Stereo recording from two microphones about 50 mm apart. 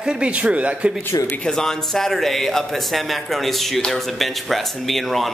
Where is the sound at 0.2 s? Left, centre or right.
Right.